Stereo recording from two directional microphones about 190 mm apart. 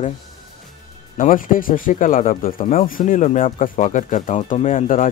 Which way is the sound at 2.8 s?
45° left (ahead or behind).